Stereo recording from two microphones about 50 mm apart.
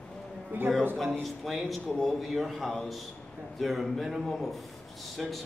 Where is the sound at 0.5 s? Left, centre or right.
Right.